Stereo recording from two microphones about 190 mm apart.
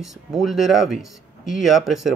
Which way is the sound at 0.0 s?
Centre (ahead or behind).